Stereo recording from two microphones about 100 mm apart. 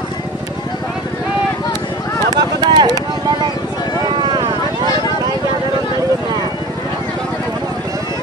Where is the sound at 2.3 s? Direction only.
45° right (ahead or behind).